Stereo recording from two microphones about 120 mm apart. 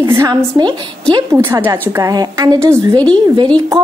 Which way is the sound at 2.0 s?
30° right (ahead or behind).